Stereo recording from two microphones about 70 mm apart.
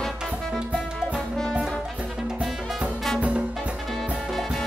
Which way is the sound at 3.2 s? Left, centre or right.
Centre.